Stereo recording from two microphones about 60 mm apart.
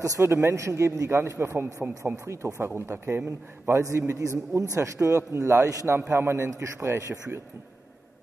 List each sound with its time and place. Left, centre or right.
0.2 s a man's voice: right
2.1 s a man's voice: right
4.2 s a man's voice: right